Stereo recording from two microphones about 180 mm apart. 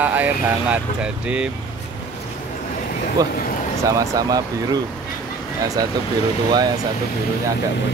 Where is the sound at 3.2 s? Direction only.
20° right (ahead or behind).